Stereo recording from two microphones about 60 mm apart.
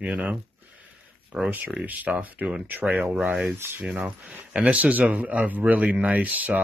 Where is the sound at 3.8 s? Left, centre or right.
Centre.